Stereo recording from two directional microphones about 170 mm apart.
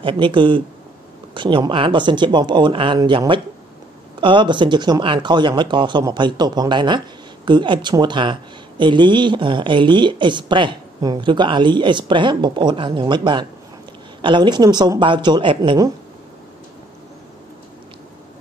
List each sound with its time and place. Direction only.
0.0 s speech: 30° right (ahead or behind)